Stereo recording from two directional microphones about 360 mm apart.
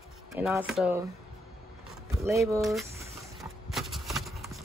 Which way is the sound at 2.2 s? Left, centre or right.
Centre.